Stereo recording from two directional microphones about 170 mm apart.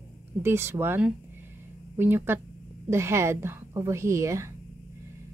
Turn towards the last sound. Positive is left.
turn(degrees=-15)  # may be behind; listen again after turning